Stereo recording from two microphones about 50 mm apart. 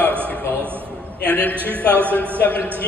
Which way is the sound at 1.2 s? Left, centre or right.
Left.